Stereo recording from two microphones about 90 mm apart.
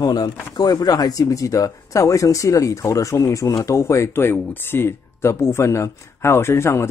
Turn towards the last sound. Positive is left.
turn(degrees=30)  # may be behind; listen again after turning